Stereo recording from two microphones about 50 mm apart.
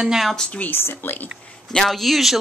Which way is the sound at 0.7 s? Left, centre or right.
Left.